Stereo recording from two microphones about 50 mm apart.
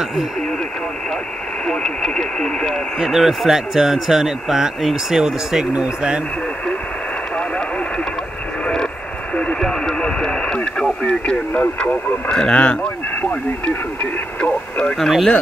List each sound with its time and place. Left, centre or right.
1.7 s speech: centre
3.0 s a man's voice: centre
9.3 s radio: left
9.6 s speech: centre
14.4 s radio: left
15.0 s speech: centre